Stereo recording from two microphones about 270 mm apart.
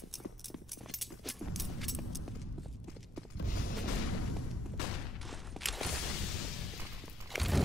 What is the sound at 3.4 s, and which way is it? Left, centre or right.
Music, left.